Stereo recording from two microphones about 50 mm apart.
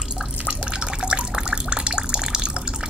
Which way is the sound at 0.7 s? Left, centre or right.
Centre.